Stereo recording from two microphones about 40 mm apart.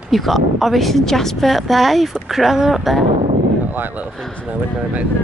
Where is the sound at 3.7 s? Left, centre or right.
Right.